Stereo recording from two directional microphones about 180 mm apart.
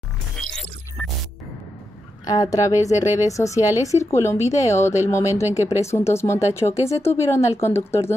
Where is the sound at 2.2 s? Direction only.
20° left (ahead or behind).